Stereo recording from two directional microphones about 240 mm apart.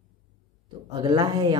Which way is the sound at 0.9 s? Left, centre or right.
Centre.